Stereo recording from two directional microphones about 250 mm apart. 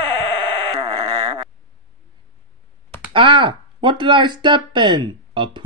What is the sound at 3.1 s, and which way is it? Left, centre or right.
Speech, centre.